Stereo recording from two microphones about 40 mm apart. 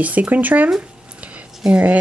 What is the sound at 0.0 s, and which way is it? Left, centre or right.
Speech, right.